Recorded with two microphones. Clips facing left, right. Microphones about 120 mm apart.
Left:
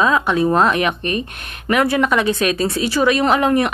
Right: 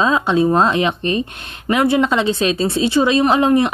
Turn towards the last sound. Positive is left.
turn(degrees=-25)  # may be behind; listen again after turning